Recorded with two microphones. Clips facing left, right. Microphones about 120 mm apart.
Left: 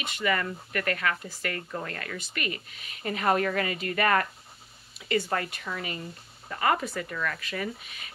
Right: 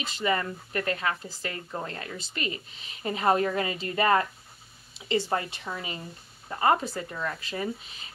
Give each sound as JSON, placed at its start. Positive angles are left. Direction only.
{"t": 0.0, "sound": "speech", "side_deg": -25}